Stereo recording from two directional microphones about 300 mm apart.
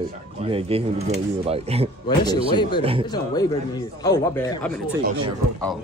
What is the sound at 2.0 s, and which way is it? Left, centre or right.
Speech, centre.